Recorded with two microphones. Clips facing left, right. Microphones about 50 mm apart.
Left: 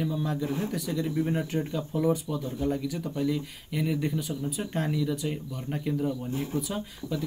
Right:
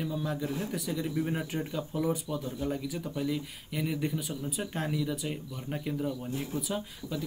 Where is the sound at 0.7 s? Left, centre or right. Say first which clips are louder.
Left 3 dB; centre.